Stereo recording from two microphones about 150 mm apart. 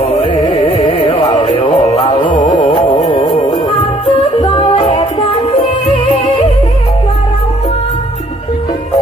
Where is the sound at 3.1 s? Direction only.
35° left (ahead or behind).